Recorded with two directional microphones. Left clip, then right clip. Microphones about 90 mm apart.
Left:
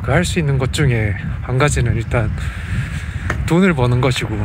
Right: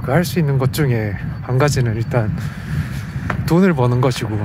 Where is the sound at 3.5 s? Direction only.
25° right (ahead or behind).